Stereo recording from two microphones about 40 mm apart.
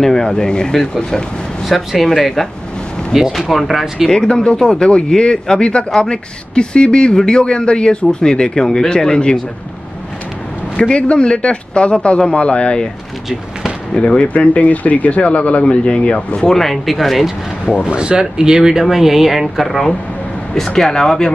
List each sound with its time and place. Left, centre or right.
0.0 s speech: centre
1.7 s speech: centre
4.1 s speech: left
10.8 s speech: left
13.9 s speech: left
16.3 s speech: centre
17.8 s speech: right; by 21.3 s centre